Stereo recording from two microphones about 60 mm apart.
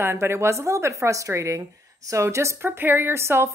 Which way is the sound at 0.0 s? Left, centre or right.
Right.